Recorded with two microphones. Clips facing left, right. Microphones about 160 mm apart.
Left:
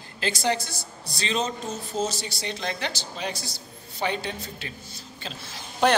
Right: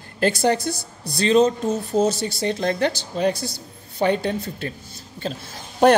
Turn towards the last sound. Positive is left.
turn(degrees=-50)  # may be behind; listen again after turning